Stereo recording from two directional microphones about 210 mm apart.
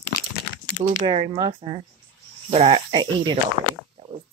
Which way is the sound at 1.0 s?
25° right (ahead or behind).